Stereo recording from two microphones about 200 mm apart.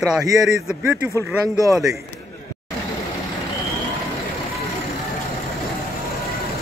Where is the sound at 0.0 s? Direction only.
5° right (ahead or behind).